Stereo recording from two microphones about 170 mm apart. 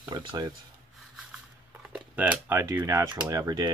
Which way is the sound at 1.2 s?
5° right (ahead or behind).